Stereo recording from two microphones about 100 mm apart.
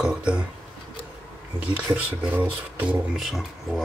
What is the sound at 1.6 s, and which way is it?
Speech, 15° right (ahead or behind).